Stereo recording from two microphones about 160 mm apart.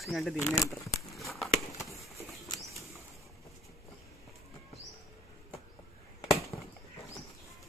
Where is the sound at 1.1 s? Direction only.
Centre (ahead or behind).